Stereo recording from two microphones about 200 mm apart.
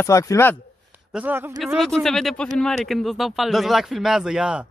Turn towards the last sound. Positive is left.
turn(degrees=-5)  # may be behind; listen again after turning